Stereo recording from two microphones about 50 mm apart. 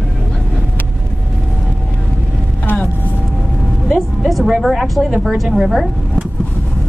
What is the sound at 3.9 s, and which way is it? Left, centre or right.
A woman's voice, centre.